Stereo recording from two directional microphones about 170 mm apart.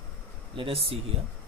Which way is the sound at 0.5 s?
35° right (ahead or behind).